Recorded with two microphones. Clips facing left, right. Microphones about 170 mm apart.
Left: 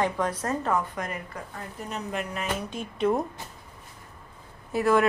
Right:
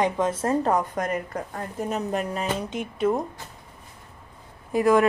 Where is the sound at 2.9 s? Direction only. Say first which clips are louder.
Right 1 dB; 5° right (ahead or behind).